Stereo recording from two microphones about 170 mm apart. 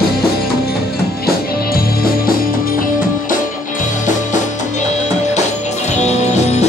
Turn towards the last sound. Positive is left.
turn(degrees=40)  # may be behind; listen again after turning